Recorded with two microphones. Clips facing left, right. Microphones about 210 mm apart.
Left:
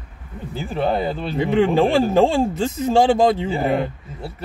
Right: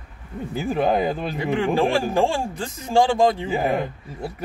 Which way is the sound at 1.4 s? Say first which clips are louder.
Left 5 dB; 25° left (ahead or behind).